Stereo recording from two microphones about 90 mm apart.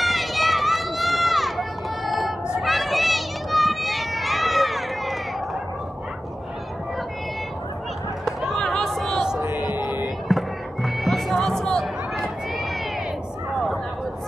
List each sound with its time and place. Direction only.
0.0 s run: centre (ahead or behind)
8.3 s a sound: 5° right (ahead or behind)
9.2 s music: 10° right (ahead or behind)
9.6 s music: 50° left (ahead or behind)
10.2 s music: centre (ahead or behind)